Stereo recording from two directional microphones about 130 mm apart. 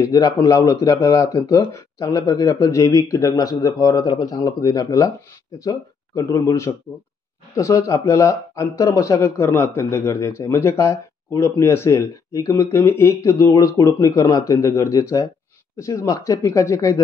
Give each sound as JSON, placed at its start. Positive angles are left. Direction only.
{"t": 0.0, "sound": "speech", "side_deg": 25}